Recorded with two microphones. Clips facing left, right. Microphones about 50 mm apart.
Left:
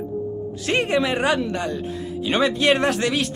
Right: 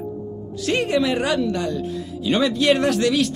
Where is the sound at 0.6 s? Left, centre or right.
Left.